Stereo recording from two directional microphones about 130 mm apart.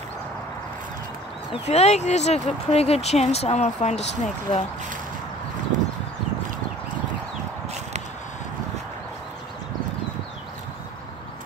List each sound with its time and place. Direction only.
1.5 s speech: 55° left (ahead or behind)